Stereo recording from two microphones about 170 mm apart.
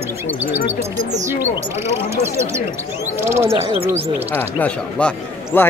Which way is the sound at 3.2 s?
15° right (ahead or behind).